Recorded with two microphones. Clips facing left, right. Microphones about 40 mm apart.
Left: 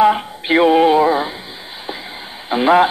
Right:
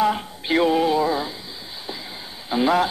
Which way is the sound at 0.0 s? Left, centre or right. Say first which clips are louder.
Left 8 dB; left.